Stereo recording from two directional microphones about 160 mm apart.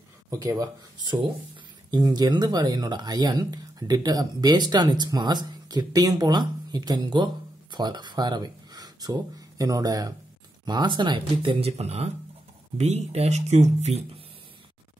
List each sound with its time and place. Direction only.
0.3 s speech: 20° right (ahead or behind); by 14.2 s 40° right (ahead or behind)